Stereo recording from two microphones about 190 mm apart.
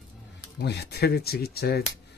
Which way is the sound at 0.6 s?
60° left (ahead or behind).